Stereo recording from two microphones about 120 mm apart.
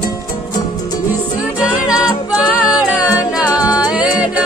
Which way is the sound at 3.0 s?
10° right (ahead or behind).